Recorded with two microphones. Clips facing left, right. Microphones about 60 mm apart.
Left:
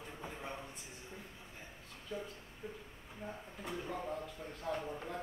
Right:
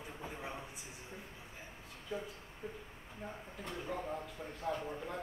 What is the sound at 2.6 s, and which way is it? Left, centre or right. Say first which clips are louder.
Speech: right 1 dB; right.